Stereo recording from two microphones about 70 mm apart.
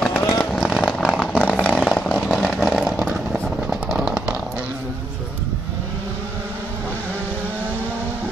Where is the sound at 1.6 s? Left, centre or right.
Centre.